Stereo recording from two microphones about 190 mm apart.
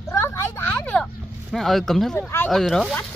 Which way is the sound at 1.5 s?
Centre (ahead or behind).